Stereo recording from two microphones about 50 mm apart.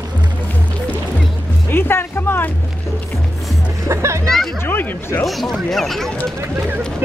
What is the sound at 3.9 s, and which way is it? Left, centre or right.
Speech, right.